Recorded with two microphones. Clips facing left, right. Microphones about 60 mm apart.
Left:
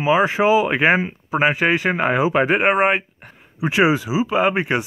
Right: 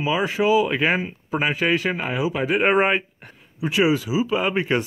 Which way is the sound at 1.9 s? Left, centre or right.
Left.